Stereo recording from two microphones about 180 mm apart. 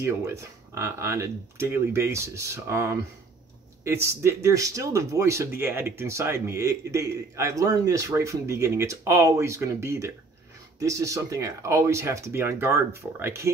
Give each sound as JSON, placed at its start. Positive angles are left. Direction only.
{"t": 0.0, "sound": "speech", "side_deg": -15}